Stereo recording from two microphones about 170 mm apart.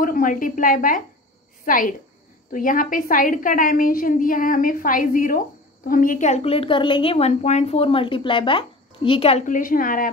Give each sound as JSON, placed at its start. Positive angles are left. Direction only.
{"t": 0.0, "sound": "a woman's voice", "side_deg": 55}
{"t": 9.5, "sound": "a woman's voice", "side_deg": 55}